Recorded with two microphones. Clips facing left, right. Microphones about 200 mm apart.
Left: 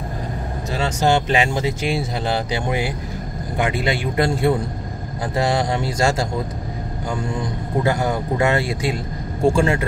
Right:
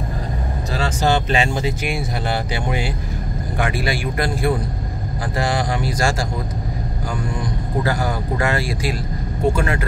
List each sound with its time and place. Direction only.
0.7 s a man's voice: 20° left (ahead or behind)
7.2 s a man's voice: 25° left (ahead or behind)